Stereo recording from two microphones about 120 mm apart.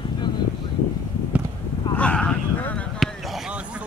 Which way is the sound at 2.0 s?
10° left (ahead or behind).